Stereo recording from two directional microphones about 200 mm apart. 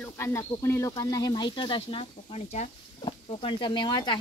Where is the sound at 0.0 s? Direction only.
15° left (ahead or behind).